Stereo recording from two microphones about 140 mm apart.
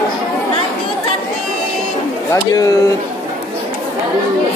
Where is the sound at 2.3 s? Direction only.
25° left (ahead or behind).